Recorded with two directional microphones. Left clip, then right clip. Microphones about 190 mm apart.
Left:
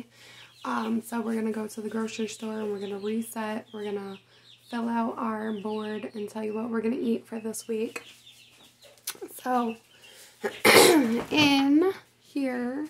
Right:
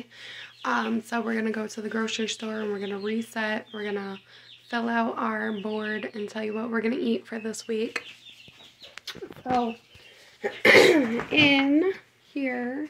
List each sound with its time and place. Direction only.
0.2 s a sound: 5° left (ahead or behind)
1.1 s speech: 5° left (ahead or behind)
10.4 s speech: 25° left (ahead or behind)